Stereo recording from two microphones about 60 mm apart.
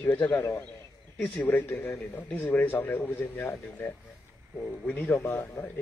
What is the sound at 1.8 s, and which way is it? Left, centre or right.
Speech, left.